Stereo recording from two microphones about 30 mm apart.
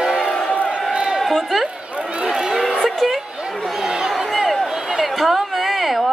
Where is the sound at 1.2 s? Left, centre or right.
Centre.